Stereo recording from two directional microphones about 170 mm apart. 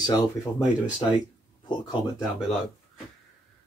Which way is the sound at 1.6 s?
25° left (ahead or behind).